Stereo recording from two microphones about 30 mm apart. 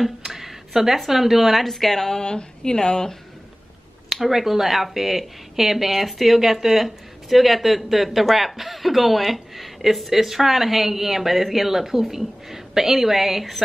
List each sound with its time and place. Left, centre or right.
0.0 s a sound: centre
0.9 s speech: centre
1.7 s speech: centre
2.2 s a woman's voice: left
4.1 s a woman's voice: centre